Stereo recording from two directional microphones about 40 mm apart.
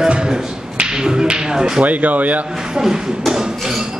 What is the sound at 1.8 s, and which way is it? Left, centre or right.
Speech, right.